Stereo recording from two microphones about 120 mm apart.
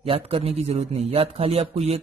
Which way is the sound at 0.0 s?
50° right (ahead or behind).